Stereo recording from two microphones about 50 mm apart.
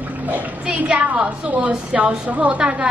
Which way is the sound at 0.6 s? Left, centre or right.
Right.